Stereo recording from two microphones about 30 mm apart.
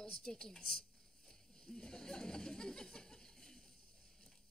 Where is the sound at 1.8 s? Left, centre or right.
Centre.